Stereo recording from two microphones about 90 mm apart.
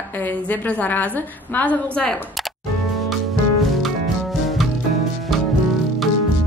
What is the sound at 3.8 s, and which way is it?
Music, centre (ahead or behind).